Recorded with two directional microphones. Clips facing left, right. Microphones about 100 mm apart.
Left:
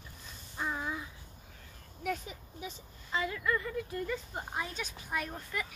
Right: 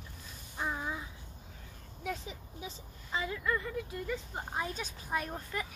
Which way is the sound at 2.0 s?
20° right (ahead or behind).